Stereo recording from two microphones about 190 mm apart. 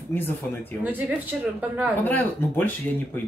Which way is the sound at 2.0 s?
10° left (ahead or behind).